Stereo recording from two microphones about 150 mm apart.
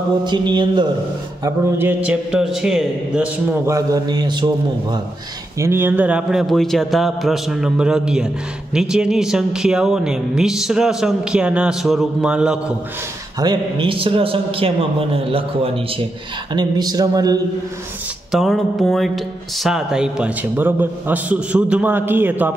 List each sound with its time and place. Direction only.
0.2 s a man's voice: 30° right (ahead or behind)
1.4 s speech: 15° right (ahead or behind)
3.6 s a man's voice: 20° right (ahead or behind)
5.6 s speech: 15° right (ahead or behind)
13.4 s a man's voice: 30° right (ahead or behind)
16.5 s a man's voice: 25° right (ahead or behind)
18.3 s speech: centre (ahead or behind)